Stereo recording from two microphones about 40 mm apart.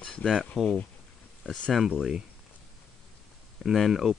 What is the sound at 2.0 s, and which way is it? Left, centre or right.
Speech, centre.